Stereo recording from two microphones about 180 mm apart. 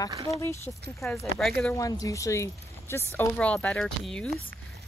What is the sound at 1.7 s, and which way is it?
Speech, 20° left (ahead or behind).